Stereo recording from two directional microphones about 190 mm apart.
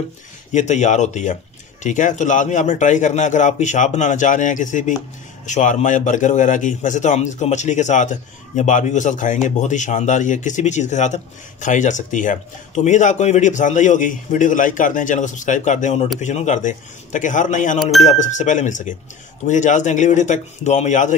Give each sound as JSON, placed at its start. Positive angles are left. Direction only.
{"t": 0.5, "sound": "a man's voice", "side_deg": 40}